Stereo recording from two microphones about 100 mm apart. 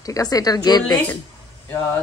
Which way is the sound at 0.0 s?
40° left (ahead or behind).